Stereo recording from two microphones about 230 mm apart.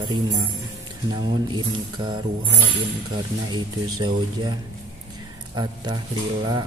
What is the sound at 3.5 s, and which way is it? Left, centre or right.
A man's voice, centre.